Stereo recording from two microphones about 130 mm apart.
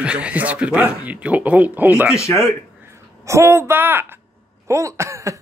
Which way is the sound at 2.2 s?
20° left (ahead or behind).